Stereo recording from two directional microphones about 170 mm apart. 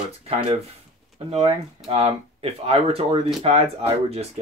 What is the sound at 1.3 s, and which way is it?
Speech, 35° right (ahead or behind).